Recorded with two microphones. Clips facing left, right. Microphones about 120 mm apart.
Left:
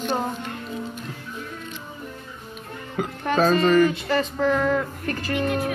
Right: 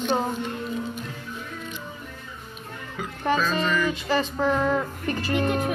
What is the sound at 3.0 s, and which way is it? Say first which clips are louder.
Music: left 7 dB; 55° left (ahead or behind).